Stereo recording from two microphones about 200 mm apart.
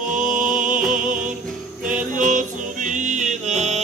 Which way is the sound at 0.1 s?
40° right (ahead or behind).